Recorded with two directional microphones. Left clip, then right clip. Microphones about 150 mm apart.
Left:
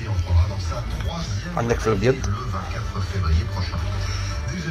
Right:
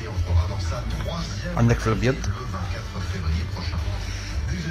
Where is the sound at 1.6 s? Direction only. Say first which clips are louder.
Left 3 dB; 30° right (ahead or behind).